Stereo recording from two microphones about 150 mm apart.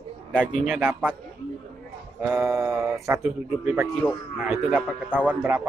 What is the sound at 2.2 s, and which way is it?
Speech, 15° right (ahead or behind).